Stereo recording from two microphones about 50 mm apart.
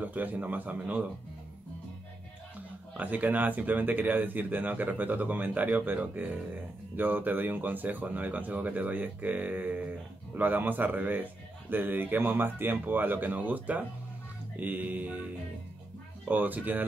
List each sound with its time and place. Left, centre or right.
0.0 s speech: right
3.0 s speech: right
16.3 s speech: right